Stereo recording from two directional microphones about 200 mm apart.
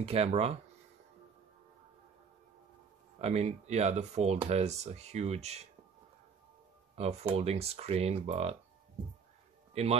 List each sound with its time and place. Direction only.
0.0 s speech: 30° right (ahead or behind)
3.2 s speech: 35° right (ahead or behind)
7.0 s speech: 30° right (ahead or behind)
9.8 s speech: 30° right (ahead or behind)